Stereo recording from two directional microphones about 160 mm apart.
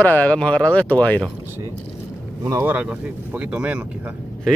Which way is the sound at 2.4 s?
20° right (ahead or behind).